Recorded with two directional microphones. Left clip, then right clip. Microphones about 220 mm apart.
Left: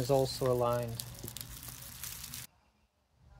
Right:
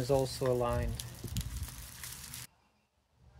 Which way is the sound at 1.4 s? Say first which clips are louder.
Right 4 dB; 5° left (ahead or behind).